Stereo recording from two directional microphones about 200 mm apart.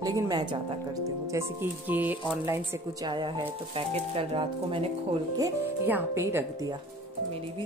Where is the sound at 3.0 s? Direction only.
20° right (ahead or behind).